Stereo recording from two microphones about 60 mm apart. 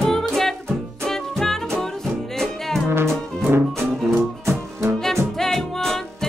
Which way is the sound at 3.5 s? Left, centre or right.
Right.